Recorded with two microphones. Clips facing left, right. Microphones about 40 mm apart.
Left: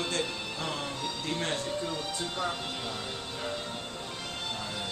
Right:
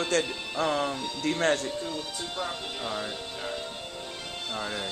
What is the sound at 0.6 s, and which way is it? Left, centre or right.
Music, right.